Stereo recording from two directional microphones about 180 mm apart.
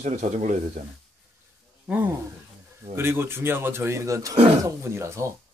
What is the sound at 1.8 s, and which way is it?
Speech, 10° right (ahead or behind).